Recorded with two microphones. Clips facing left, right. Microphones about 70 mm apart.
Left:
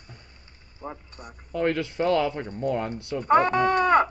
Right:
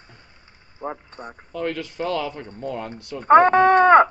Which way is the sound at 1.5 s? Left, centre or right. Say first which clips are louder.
Left 3 dB; left.